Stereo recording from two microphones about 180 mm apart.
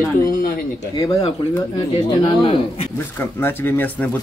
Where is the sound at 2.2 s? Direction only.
30° left (ahead or behind).